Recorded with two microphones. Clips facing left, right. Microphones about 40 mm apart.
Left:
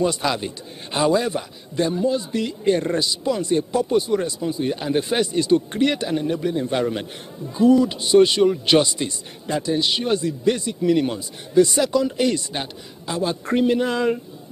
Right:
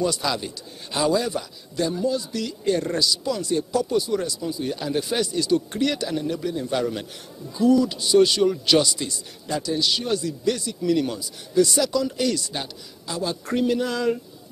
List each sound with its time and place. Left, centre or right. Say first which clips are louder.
0.0 s a man's voice: left 3 dB; left